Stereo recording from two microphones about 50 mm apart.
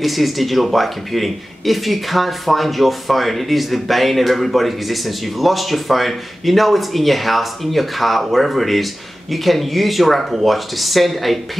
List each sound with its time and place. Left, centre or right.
0.0 s a man's voice: centre